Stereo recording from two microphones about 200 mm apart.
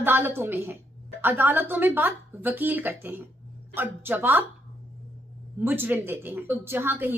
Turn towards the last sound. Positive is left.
turn(degrees=-10)  # may be behind; listen again after turning